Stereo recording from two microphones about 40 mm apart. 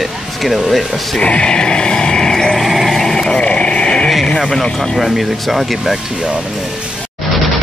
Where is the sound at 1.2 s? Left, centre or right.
Left.